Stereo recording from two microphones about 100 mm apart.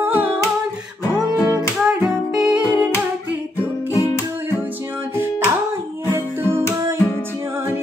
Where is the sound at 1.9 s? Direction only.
5° right (ahead or behind).